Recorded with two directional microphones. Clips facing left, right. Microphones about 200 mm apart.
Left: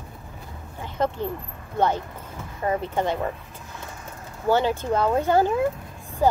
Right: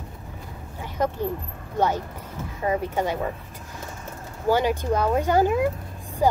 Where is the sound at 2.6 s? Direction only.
10° right (ahead or behind).